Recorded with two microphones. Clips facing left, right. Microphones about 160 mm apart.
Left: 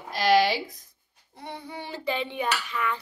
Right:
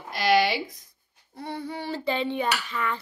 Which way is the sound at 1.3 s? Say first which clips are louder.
Right 5 dB; 20° left (ahead or behind).